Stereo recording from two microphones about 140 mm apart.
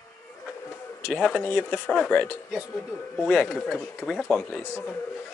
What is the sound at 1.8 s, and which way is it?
Speech, centre (ahead or behind).